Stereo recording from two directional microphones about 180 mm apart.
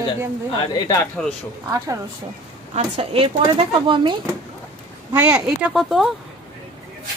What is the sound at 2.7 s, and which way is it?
Speech, 30° right (ahead or behind).